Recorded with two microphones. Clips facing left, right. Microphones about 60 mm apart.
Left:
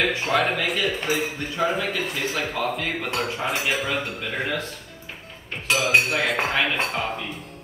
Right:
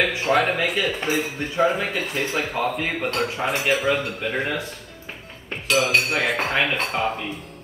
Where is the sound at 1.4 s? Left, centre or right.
Right.